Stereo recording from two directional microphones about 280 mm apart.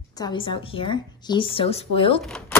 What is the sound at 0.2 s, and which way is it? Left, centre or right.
A woman's voice, centre.